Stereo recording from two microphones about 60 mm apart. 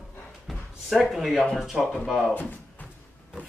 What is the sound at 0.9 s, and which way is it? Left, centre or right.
Speech, centre.